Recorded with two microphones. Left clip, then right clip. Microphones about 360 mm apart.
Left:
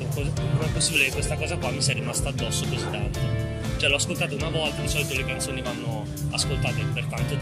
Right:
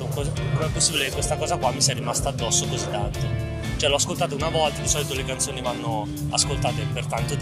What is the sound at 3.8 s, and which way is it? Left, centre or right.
Speech, centre.